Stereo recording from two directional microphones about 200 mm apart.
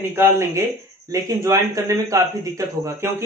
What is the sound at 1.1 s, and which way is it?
A man's voice, 15° right (ahead or behind).